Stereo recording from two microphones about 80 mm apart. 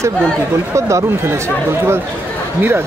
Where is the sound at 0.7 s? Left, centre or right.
Right.